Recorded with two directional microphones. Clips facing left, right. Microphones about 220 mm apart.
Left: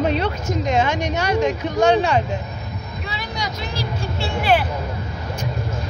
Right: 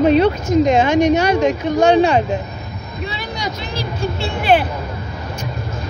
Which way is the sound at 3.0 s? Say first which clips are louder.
Right 5 dB; 25° right (ahead or behind).